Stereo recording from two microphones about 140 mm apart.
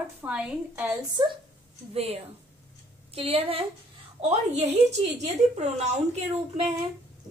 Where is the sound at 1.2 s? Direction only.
30° right (ahead or behind).